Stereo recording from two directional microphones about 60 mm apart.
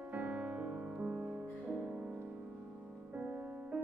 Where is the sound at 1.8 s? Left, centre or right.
Centre.